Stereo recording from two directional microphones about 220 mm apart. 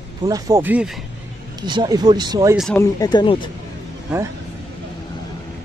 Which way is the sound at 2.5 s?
Centre (ahead or behind).